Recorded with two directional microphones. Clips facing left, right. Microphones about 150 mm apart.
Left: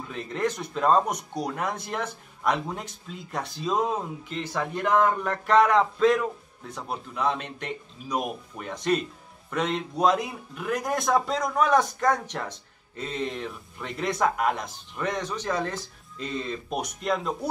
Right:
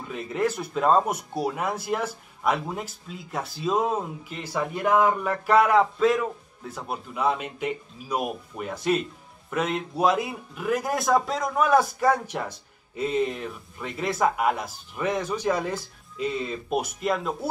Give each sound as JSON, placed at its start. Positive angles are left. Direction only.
{"t": 0.1, "sound": "speech", "side_deg": -5}